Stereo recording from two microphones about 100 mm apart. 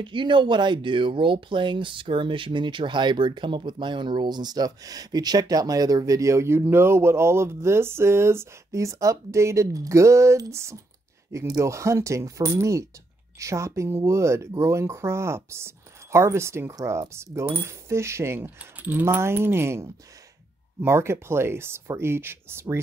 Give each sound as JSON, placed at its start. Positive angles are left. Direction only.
{"t": 0.0, "sound": "speech", "side_deg": -55}